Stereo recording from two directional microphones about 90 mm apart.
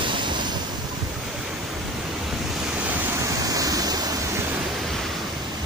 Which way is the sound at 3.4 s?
40° right (ahead or behind).